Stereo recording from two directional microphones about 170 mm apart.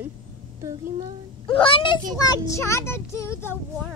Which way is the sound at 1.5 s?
30° left (ahead or behind).